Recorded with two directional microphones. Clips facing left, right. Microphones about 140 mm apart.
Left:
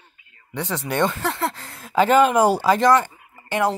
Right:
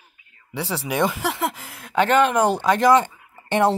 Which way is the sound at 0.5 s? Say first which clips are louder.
Even; 10° right (ahead or behind).